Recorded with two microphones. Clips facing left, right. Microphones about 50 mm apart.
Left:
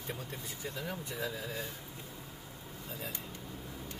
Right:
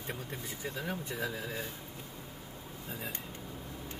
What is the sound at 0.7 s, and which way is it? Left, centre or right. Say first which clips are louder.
Speech: right 2 dB; right.